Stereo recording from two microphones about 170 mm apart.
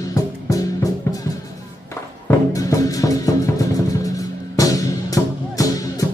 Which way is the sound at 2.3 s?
20° left (ahead or behind).